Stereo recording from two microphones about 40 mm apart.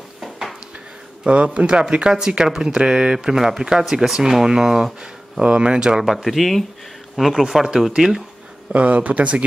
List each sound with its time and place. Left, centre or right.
0.2 s dishes: centre
1.2 s speech: right
2.1 s speech: centre
5.4 s speech: right
6.0 s speech: centre
8.7 s speech: right